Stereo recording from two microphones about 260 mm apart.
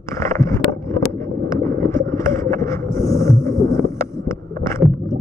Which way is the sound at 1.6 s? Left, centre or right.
Centre.